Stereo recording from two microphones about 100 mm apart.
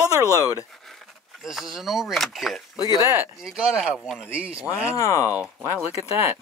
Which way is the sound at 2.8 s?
40° left (ahead or behind).